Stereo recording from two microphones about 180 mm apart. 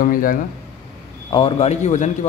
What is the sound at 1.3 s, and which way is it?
Speech, 30° left (ahead or behind).